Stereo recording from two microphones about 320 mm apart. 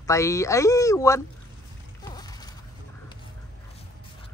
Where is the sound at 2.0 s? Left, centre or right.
Centre.